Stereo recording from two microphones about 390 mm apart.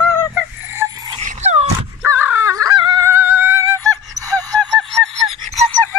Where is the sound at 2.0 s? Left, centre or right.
Centre.